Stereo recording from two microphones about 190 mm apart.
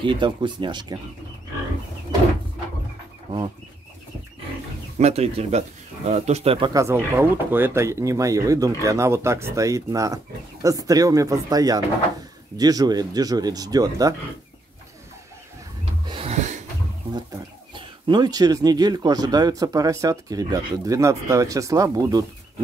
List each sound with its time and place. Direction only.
0.0 s speech: 25° right (ahead or behind)
4.9 s speech: 35° right (ahead or behind)
6.7 s speech: 15° right (ahead or behind)
16.1 s a sound: 30° right (ahead or behind)
17.7 s speech: 25° right (ahead or behind)